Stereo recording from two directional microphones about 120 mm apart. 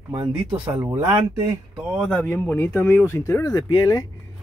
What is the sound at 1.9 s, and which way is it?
Speech, 5° left (ahead or behind).